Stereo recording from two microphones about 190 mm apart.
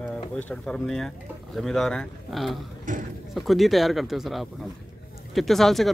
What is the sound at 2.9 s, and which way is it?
Speech, 45° right (ahead or behind).